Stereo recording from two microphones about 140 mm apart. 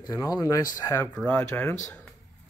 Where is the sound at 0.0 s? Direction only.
25° left (ahead or behind).